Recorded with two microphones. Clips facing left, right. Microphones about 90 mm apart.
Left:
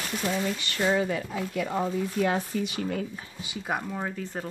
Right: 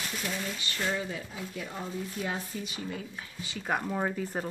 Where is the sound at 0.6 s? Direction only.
65° left (ahead or behind).